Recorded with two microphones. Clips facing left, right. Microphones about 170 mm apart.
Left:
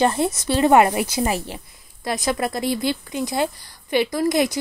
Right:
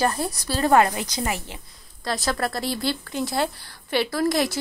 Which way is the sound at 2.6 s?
Centre (ahead or behind).